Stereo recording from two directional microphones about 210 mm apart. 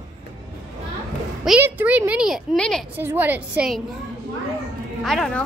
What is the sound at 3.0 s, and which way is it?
Speech, 10° right (ahead or behind).